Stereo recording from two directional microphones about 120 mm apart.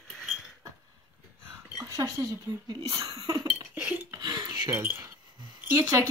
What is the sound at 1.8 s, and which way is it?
Speech, 25° right (ahead or behind).